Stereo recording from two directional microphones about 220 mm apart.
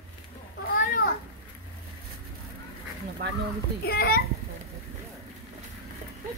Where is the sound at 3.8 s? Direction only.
45° left (ahead or behind).